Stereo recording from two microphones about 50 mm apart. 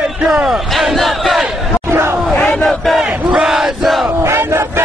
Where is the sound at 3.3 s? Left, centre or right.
Centre.